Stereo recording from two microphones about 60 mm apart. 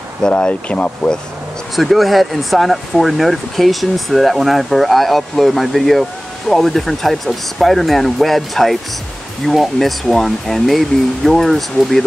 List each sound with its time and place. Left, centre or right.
0.3 s speech: left
1.8 s speech: centre